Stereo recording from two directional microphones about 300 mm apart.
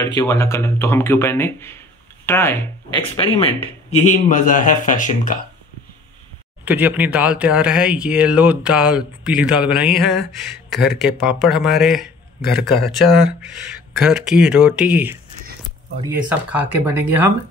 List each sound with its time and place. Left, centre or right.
0.0 s speech: centre; by 5.4 s left
6.6 s speech: centre